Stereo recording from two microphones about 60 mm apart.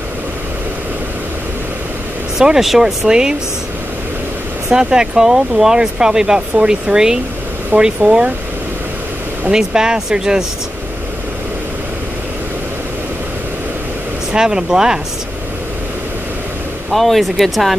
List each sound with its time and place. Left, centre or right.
2.3 s speech: centre
4.6 s speech: centre
9.5 s speech: centre
14.3 s speech: centre
16.9 s speech: centre